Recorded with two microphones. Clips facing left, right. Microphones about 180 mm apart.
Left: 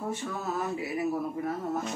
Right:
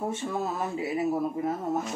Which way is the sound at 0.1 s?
25° right (ahead or behind).